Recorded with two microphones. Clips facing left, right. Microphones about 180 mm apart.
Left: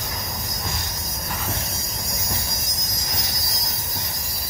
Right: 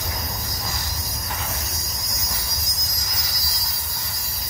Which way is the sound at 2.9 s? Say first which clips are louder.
Left 6 dB; 25° left (ahead or behind).